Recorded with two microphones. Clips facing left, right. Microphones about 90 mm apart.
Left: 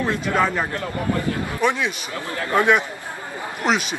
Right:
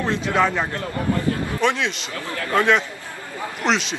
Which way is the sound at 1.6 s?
10° left (ahead or behind).